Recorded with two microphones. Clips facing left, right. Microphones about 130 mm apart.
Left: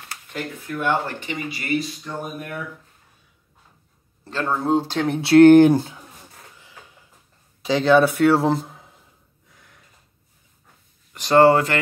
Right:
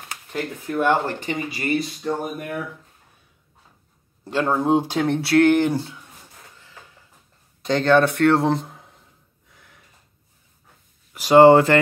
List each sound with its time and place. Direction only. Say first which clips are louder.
0.3 s speech: right 3 dB; 40° right (ahead or behind)
4.2 s speech: right 3 dB; 15° right (ahead or behind)
5.2 s speech: left 7 dB; 30° left (ahead or behind)
5.5 s speech: left 7 dB; 50° left (ahead or behind)
7.6 s speech: left 1 dB; 5° left (ahead or behind)
9.5 s snort: even; centre (ahead or behind)
11.1 s speech: right 3 dB; 10° right (ahead or behind)
11.4 s speech: right 4 dB; 30° right (ahead or behind)